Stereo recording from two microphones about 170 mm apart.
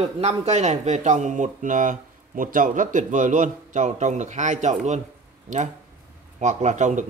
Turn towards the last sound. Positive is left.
turn(degrees=-45)  # may be behind; listen again after turning